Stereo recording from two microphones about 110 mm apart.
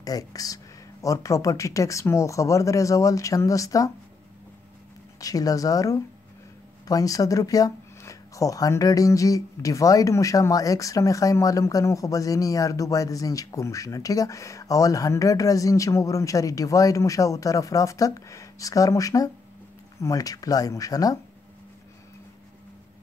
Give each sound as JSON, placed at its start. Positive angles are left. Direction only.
{"t": 0.0, "sound": "speech", "side_deg": 35}
{"t": 5.2, "sound": "speech", "side_deg": 35}